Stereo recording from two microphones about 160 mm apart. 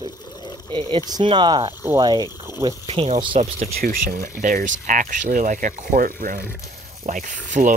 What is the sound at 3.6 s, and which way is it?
Speech, 65° right (ahead or behind).